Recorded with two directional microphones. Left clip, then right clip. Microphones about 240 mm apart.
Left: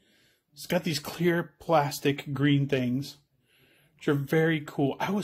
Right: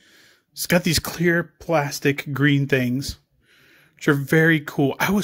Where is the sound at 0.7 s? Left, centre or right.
Right.